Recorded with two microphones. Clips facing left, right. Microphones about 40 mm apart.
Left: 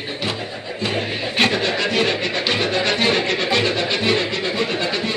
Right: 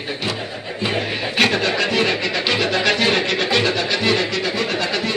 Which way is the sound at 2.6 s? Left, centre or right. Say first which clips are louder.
Right 2 dB; right.